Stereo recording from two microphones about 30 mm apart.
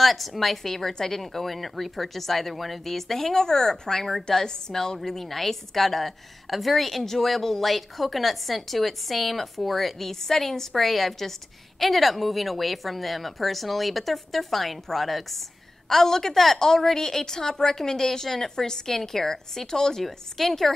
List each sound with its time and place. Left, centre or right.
0.0 s speech: centre
0.7 s a woman's voice: centre
15.9 s a woman's voice: centre